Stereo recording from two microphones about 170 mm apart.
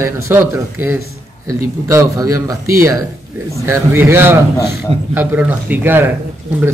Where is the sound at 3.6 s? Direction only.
15° right (ahead or behind).